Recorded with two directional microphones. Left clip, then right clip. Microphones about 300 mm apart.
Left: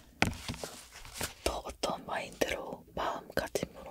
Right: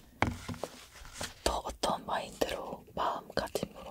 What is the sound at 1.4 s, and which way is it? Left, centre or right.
Whispering, centre.